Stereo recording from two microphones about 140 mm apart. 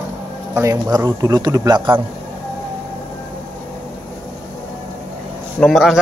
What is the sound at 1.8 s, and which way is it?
Speech, 35° right (ahead or behind).